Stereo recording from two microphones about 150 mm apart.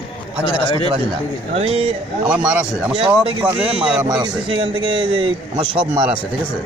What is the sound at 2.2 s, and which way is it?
Speech, 5° right (ahead or behind).